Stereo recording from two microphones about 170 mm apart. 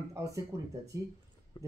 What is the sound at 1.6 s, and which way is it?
Speech, 30° left (ahead or behind).